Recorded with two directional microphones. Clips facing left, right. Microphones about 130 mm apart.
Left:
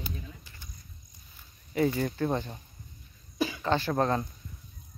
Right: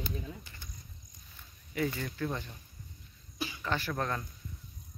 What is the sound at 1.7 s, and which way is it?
Speech, 35° left (ahead or behind).